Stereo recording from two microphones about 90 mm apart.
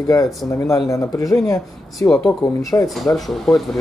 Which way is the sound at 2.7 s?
40° left (ahead or behind).